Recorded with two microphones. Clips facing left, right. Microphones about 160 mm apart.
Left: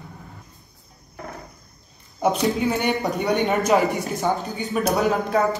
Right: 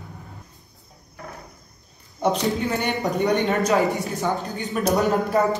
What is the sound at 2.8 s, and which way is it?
Speech, centre (ahead or behind).